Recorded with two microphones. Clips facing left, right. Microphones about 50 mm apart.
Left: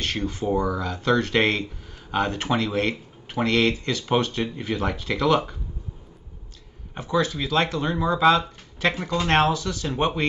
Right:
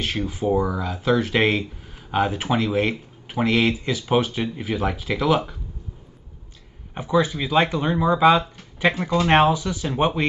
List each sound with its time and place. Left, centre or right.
0.0 s speech: centre
6.9 s speech: centre